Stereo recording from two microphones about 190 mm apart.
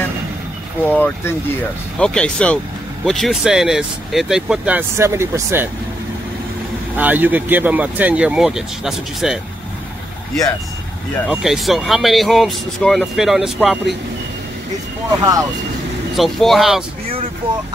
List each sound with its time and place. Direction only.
0.8 s speech: 10° left (ahead or behind); by 5.7 s 15° right (ahead or behind)
7.0 s speech: 10° right (ahead or behind)
11.2 s speech: centre (ahead or behind)
15.0 s speech: 20° right (ahead or behind)
16.2 s speech: centre (ahead or behind)